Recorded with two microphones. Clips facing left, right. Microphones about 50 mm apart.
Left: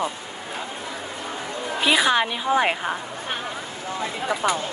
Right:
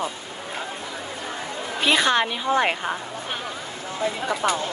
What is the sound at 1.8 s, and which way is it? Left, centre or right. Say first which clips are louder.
A woman's voice: even; centre.